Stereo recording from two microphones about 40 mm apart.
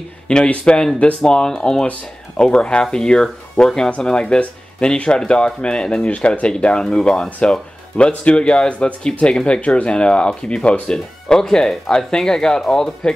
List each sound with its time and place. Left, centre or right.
0.5 s speech: left
6.0 s speech: left; by 13.1 s centre